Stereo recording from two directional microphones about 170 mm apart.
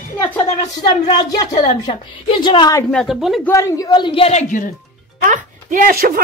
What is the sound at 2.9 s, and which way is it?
Speech, centre (ahead or behind).